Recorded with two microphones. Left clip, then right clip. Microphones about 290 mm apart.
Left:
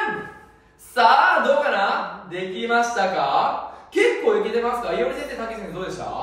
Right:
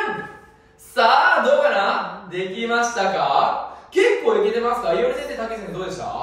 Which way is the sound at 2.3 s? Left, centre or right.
Centre.